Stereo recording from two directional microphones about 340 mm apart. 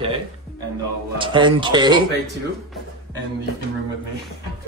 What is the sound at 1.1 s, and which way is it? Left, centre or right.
Speech, centre.